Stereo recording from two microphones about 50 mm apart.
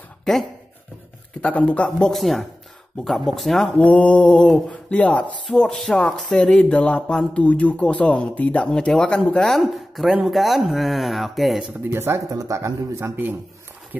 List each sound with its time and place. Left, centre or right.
0.2 s dog: centre
1.4 s speech: left
2.1 s speech: centre
3.6 s speech: left
5.5 s speech: centre
9.4 s speech: centre
11.9 s speech: right
13.0 s a man's voice: right